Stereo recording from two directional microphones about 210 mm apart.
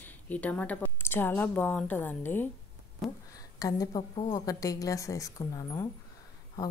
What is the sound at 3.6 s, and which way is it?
A woman's voice, 20° left (ahead or behind).